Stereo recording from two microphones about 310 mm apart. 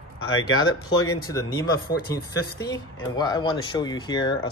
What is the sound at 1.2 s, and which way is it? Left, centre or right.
Speech, centre.